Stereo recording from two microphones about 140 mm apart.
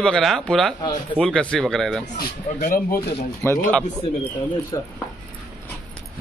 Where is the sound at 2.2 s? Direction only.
90° left.